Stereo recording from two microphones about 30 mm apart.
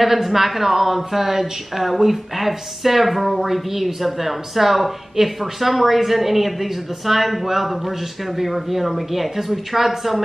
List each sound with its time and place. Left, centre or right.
0.0 s a woman's voice: centre